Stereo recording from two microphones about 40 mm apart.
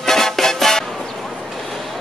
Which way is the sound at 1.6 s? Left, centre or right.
Centre.